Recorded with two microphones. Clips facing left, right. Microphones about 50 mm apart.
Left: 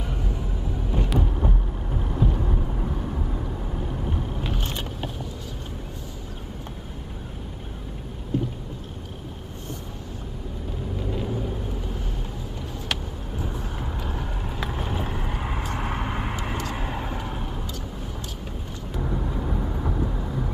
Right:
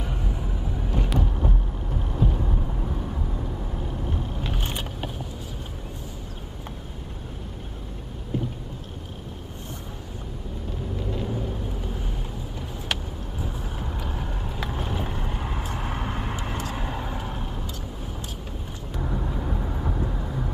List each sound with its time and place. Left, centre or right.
0.0 s vehicle: centre
0.9 s a sound: centre
4.6 s vehicle: centre
8.3 s vehicle: centre
11.0 s vehicle: centre
18.9 s vehicle: centre